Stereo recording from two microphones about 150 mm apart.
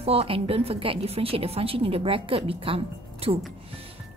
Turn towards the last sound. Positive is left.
turn(degrees=-40)  # may be behind; listen again after turning